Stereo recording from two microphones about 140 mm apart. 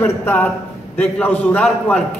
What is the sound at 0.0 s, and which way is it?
Speech, 20° left (ahead or behind).